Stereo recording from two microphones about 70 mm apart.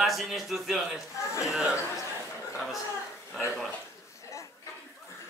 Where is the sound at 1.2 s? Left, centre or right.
Left.